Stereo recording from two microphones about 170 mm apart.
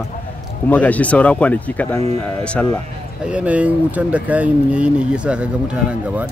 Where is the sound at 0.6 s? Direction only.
10° left (ahead or behind).